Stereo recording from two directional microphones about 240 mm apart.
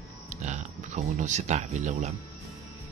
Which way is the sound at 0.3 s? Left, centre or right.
Right.